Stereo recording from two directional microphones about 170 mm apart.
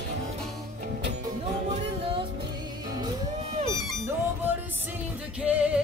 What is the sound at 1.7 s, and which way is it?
Music, 30° right (ahead or behind).